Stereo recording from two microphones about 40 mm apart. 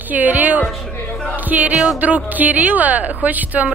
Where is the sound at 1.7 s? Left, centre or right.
Centre.